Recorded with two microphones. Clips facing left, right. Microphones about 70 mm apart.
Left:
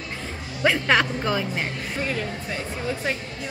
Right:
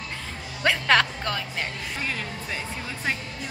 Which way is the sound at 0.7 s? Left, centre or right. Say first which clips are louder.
Left 1 dB; centre.